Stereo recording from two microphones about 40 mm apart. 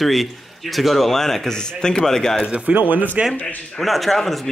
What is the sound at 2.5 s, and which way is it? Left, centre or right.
Speech, right.